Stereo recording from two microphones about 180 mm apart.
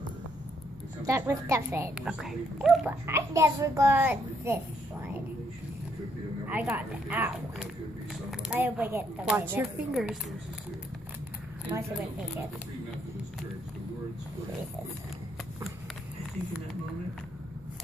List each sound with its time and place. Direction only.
1.0 s a woman's voice: 15° right (ahead or behind)
3.1 s a woman's voice: 15° right (ahead or behind)
6.4 s a woman's voice: 10° right (ahead or behind)
11.7 s a woman's voice: 15° right (ahead or behind)